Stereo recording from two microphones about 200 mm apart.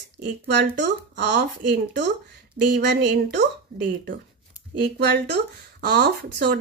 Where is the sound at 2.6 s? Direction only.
60° right (ahead or behind).